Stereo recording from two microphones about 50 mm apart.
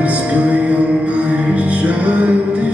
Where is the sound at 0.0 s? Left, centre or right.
Right.